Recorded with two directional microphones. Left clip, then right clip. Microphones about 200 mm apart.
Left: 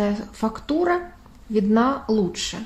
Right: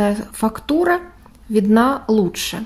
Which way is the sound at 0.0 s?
30° right (ahead or behind).